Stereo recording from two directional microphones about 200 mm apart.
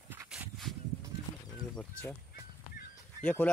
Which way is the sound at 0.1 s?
10° right (ahead or behind).